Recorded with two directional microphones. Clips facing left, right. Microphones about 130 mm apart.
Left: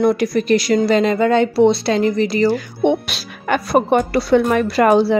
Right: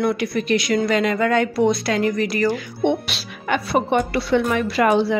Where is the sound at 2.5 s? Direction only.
45° left (ahead or behind).